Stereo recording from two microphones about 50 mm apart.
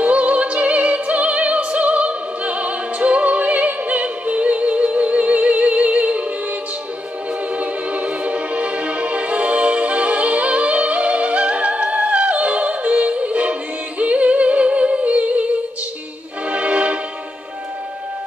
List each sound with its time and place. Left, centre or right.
0.0 s opera: right
7.5 s music: right
16.4 s music: right